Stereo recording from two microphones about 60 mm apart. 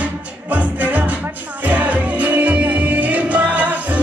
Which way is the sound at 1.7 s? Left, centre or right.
Right.